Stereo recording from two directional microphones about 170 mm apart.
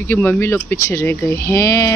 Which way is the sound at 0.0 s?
10° left (ahead or behind).